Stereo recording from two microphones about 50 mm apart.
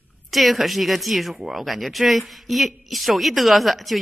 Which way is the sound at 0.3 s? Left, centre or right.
Centre.